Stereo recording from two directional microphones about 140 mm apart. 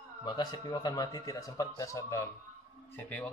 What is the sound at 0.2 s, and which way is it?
A man's voice, 30° left (ahead or behind).